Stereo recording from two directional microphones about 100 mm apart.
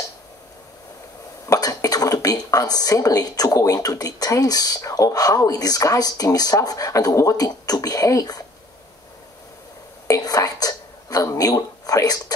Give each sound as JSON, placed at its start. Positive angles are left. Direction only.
{"t": 1.5, "sound": "speech", "side_deg": 35}
{"t": 10.0, "sound": "whispering", "side_deg": 35}
{"t": 11.3, "sound": "speech", "side_deg": 40}